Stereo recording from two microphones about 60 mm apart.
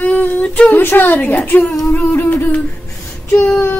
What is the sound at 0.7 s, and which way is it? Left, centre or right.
Speech, left.